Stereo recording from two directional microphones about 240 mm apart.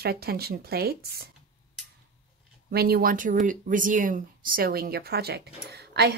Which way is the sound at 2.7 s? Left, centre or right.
Right.